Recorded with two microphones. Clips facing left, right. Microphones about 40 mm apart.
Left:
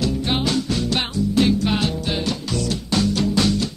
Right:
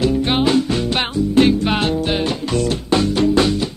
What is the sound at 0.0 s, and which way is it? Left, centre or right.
Music, right.